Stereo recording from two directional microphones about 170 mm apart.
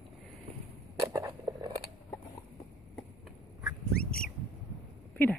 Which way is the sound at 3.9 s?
60° left (ahead or behind).